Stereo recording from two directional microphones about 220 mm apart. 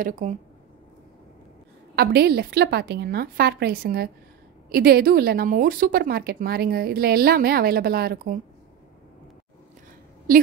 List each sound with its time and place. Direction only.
0.0 s speech: 35° right (ahead or behind)
2.0 s speech: 45° right (ahead or behind)